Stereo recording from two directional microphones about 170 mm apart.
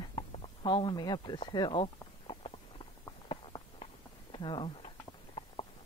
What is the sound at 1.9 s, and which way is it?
Clip-clop, 30° left (ahead or behind).